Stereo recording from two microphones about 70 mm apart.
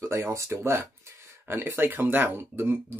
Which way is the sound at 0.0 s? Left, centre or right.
Right.